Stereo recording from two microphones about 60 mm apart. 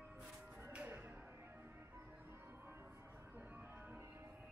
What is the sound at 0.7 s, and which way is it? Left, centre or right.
Music, right.